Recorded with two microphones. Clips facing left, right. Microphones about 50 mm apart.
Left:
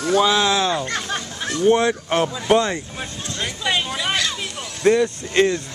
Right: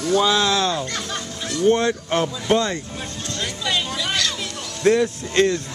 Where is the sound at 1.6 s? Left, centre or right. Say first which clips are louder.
Left 1 dB; centre.